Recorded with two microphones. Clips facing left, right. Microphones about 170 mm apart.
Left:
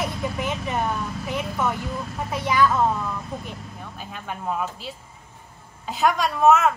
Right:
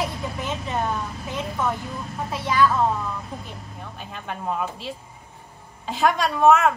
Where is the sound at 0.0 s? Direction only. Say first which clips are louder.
Left 1 dB; 15° left (ahead or behind).